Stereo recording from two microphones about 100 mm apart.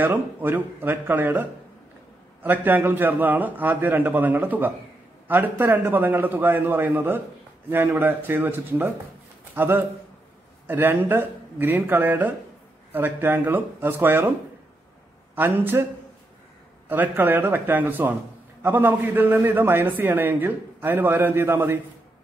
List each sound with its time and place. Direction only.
0.0 s a man's voice: 20° right (ahead or behind)
15.3 s a man's voice: 20° right (ahead or behind)
16.9 s a man's voice: 20° right (ahead or behind)